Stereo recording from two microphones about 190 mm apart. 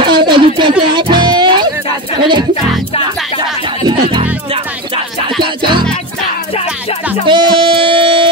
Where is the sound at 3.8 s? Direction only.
25° right (ahead or behind).